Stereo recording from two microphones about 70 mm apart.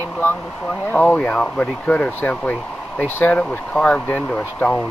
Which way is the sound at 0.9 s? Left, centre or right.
Centre.